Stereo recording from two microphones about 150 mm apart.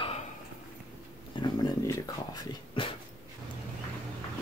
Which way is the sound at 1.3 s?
25° left (ahead or behind).